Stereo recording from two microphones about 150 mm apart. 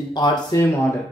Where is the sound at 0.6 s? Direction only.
20° left (ahead or behind).